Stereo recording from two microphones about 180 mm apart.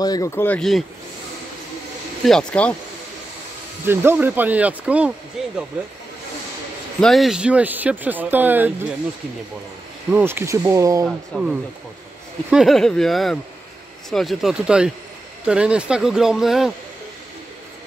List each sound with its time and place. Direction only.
0.0 s speech: 20° left (ahead or behind); by 0.8 s centre (ahead or behind)
2.2 s speech: 5° left (ahead or behind)
3.8 s speech: 10° right (ahead or behind)
7.0 s speech: centre (ahead or behind)
10.1 s speech: 10° right (ahead or behind)
11.1 s speech: centre (ahead or behind)